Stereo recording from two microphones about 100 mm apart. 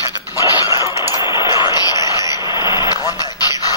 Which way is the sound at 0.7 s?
30° right (ahead or behind).